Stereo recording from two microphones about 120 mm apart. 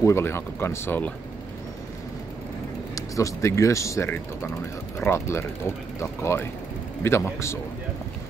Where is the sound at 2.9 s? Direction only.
25° left (ahead or behind).